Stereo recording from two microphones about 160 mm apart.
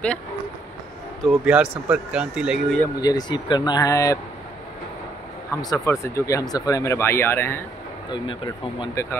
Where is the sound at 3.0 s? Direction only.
25° left (ahead or behind).